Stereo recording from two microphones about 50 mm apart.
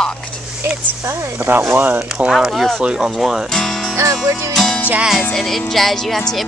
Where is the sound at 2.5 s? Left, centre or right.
Centre.